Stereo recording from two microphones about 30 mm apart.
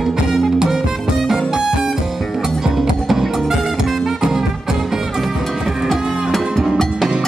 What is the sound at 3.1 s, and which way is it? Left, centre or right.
Music, centre.